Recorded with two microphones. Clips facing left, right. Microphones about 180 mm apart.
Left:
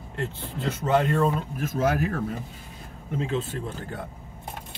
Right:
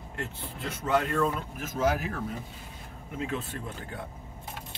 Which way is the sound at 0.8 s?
25° left (ahead or behind).